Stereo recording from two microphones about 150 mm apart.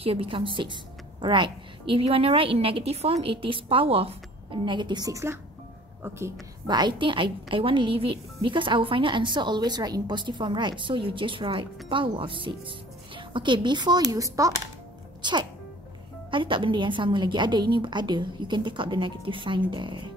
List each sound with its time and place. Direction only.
0.0 s a woman's voice: 40° right (ahead or behind); by 6.3 s 20° right (ahead or behind)
6.7 s a woman's voice: 30° right (ahead or behind)